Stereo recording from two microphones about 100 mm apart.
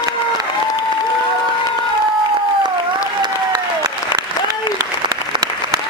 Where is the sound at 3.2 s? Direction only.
45° right (ahead or behind).